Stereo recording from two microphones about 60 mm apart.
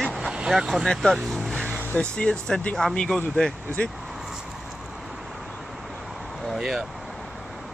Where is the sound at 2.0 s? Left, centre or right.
Centre.